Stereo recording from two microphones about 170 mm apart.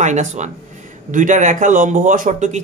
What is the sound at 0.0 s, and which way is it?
Speech, 45° right (ahead or behind).